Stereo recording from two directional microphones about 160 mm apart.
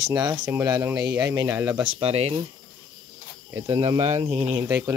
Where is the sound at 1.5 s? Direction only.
10° right (ahead or behind).